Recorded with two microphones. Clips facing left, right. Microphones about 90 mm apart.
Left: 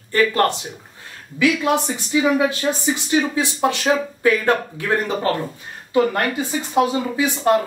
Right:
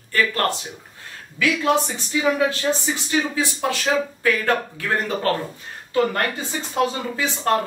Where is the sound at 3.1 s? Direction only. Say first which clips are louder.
Left 2 dB; 20° left (ahead or behind).